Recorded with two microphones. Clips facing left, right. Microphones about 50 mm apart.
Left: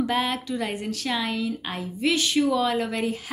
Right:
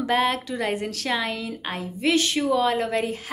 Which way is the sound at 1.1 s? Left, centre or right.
Right.